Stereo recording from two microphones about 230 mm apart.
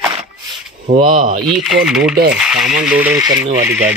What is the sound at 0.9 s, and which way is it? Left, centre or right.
Speech, right.